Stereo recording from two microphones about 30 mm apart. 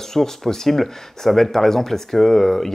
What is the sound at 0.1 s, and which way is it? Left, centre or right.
Speech, centre.